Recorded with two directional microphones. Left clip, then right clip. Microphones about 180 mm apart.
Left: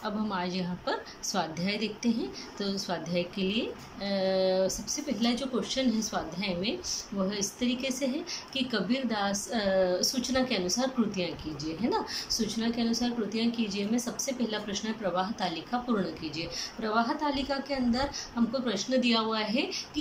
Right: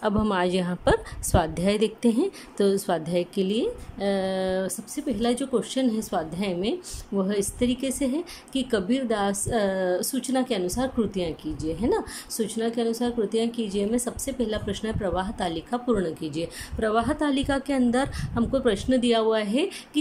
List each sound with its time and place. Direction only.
0.0 s a woman's voice: 40° right (ahead or behind)